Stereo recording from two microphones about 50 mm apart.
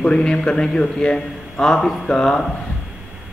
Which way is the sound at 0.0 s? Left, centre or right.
Centre.